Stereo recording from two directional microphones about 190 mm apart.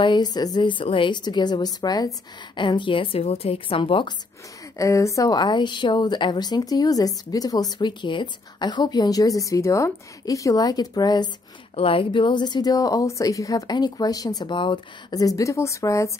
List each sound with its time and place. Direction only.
0.0 s a woman's voice: 25° left (ahead or behind)
4.7 s a woman's voice: 15° left (ahead or behind)